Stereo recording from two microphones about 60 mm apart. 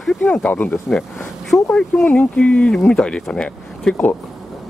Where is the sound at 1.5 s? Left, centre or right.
Centre.